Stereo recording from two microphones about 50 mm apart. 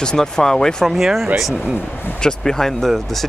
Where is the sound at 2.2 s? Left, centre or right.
Centre.